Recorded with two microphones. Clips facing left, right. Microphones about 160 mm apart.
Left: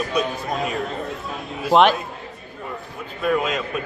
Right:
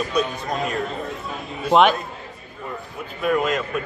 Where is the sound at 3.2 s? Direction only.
Centre (ahead or behind).